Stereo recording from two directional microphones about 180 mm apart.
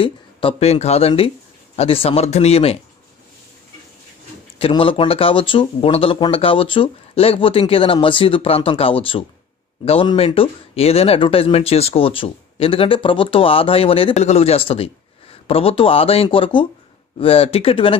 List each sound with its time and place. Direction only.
0.0 s speech: 30° left (ahead or behind)
4.6 s speech: 30° left (ahead or behind)